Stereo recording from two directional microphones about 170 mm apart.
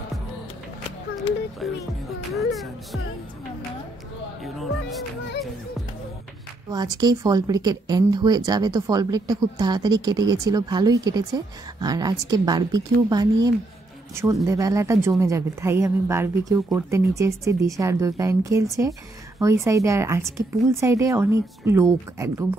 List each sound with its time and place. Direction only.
1.6 s music: centre (ahead or behind)
4.4 s music: centre (ahead or behind)
6.7 s speech: 25° right (ahead or behind)